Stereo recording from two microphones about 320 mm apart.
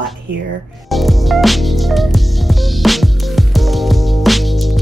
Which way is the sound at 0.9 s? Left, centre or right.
Centre.